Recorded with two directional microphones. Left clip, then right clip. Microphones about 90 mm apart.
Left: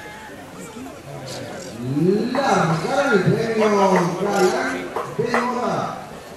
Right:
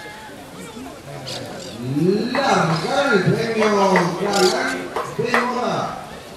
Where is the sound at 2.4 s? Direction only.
10° right (ahead or behind).